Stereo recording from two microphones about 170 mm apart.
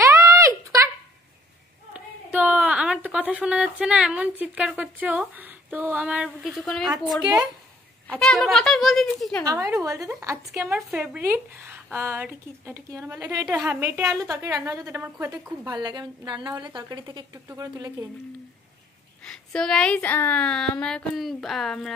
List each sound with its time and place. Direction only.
0.0 s a sound: 15° right (ahead or behind)
2.0 s a woman's voice: 10° right (ahead or behind)
8.1 s speech: 5° left (ahead or behind)
9.4 s a woman's voice: 20° right (ahead or behind)
13.5 s a woman's voice: 10° right (ahead or behind)
19.2 s speech: 5° left (ahead or behind)